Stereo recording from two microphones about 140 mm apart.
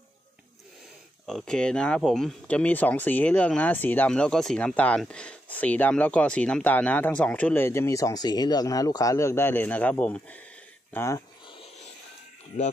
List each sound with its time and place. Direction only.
1.2 s speech: 5° left (ahead or behind)
10.9 s speech: 20° left (ahead or behind)
12.5 s speech: 60° left (ahead or behind)